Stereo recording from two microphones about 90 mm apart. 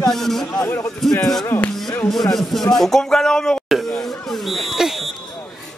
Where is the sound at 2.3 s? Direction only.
Centre (ahead or behind).